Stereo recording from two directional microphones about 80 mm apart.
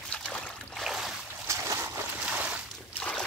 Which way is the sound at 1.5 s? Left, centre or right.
Right.